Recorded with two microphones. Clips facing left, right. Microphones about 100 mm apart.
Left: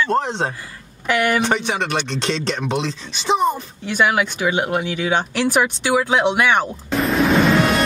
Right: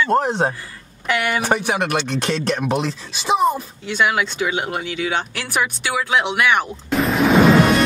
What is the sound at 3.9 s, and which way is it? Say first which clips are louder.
Speech: left 1 dB; 15° left (ahead or behind).